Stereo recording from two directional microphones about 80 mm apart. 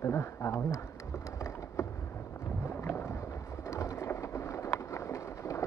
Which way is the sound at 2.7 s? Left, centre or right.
Left.